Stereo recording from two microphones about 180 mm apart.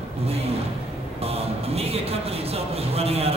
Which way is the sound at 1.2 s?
35° right (ahead or behind).